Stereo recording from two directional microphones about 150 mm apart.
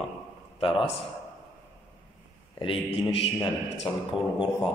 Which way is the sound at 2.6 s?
35° left (ahead or behind).